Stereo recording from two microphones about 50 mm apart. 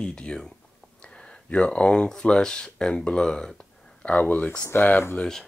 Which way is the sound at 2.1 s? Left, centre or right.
Centre.